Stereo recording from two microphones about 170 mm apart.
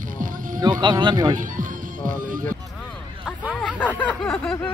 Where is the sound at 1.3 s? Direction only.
50° right (ahead or behind).